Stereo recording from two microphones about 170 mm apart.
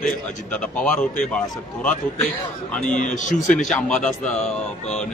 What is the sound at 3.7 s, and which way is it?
A man's voice, 5° left (ahead or behind).